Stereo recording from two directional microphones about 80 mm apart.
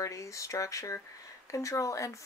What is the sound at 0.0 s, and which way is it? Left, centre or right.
Speech, left.